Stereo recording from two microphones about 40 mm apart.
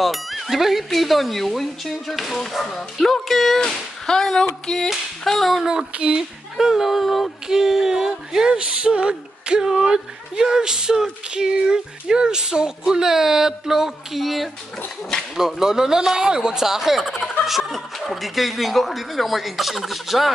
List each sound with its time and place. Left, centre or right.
0.0 s speech: centre
5.6 s speech: centre
5.9 s music: right
6.6 s speech: centre
7.4 s speech: centre
8.5 s music: right
9.7 s speech: centre
15.6 s speech: centre